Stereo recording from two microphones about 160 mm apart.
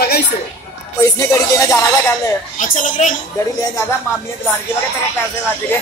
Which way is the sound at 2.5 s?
55° left (ahead or behind).